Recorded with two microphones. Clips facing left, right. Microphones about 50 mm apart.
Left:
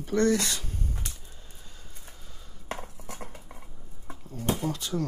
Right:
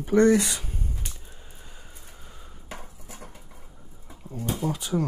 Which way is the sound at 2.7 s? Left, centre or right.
Left.